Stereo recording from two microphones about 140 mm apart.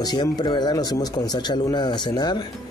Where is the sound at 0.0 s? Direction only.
30° left (ahead or behind).